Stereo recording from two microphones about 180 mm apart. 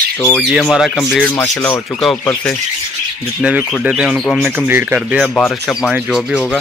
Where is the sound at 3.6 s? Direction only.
Centre (ahead or behind).